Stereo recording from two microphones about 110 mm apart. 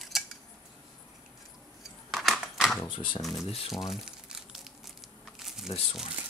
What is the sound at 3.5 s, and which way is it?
Speech, 60° left (ahead or behind).